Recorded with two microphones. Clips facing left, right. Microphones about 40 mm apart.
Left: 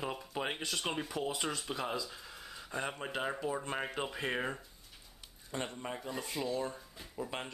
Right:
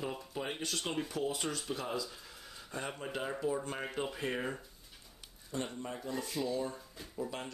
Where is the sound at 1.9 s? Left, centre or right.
Centre.